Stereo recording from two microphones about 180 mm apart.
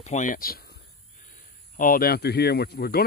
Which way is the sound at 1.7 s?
50° left (ahead or behind).